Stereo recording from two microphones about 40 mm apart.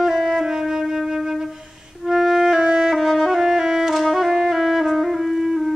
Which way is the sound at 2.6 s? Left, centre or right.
Centre.